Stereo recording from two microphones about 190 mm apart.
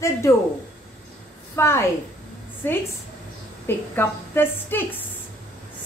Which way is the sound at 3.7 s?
10° left (ahead or behind).